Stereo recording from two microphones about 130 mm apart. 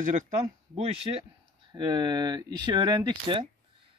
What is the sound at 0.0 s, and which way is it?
Speech, 75° right (ahead or behind).